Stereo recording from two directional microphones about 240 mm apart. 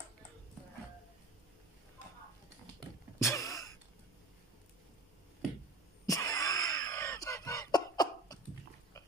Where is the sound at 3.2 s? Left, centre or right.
Centre.